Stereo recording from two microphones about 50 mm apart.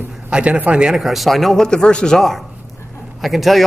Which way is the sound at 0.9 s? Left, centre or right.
Centre.